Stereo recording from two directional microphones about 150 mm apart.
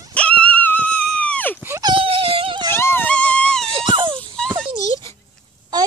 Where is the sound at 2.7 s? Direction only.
15° left (ahead or behind).